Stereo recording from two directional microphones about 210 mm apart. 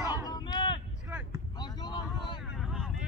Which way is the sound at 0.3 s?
20° left (ahead or behind).